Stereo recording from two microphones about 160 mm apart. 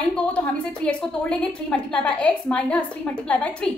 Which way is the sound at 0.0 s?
5° left (ahead or behind).